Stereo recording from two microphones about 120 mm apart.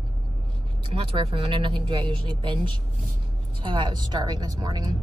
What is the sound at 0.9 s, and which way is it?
A woman's voice, 45° right (ahead or behind).